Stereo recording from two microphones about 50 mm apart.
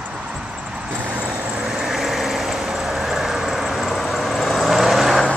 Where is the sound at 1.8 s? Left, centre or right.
Centre.